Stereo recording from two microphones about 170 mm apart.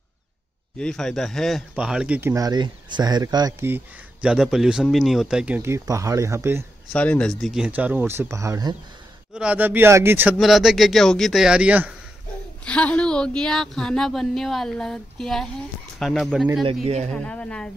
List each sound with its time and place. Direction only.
0.7 s speech: 5° left (ahead or behind); by 6.6 s 15° right (ahead or behind)
6.9 s speech: 5° left (ahead or behind); by 8.7 s 20° right (ahead or behind)
9.3 s speech: 5° right (ahead or behind)
10.3 s speech: centre (ahead or behind)
12.6 s speech: 5° left (ahead or behind)
16.8 s speech: 40° right (ahead or behind)
17.2 s speech: 5° left (ahead or behind)